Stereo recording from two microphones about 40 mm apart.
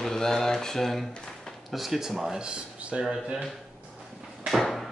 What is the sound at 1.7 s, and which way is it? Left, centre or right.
Speech, centre.